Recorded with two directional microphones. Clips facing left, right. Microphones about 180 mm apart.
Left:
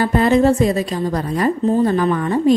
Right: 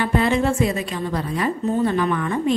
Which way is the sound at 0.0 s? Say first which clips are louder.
Left 6 dB; 40° left (ahead or behind).